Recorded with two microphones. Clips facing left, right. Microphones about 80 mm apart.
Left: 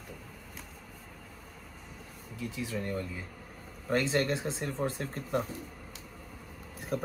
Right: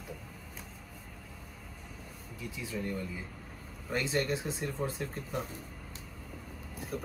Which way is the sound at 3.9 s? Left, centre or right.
Left.